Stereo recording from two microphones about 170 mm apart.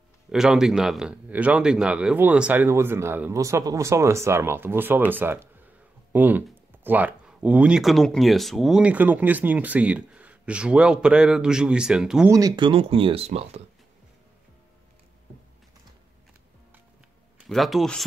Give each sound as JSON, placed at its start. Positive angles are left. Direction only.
{"t": 0.3, "sound": "a man's voice", "side_deg": -5}
{"t": 12.3, "sound": "speech", "side_deg": -20}
{"t": 17.4, "sound": "speech", "side_deg": 0}